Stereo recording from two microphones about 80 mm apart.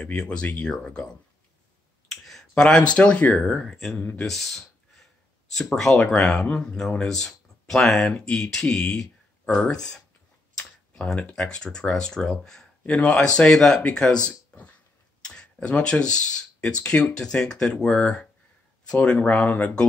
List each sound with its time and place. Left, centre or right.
0.0 s speech: centre
2.0 s clicking: centre
2.9 s speech: centre
3.4 s speech: centre